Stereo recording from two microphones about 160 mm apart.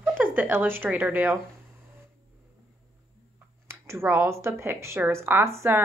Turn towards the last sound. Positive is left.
turn(degrees=-15)  # may be behind; listen again after turning